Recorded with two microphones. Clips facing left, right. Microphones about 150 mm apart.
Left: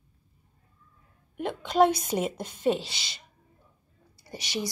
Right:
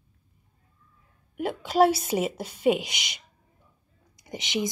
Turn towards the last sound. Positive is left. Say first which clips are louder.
# right 4 dB
turn(degrees=-20)  # may be behind; listen again after turning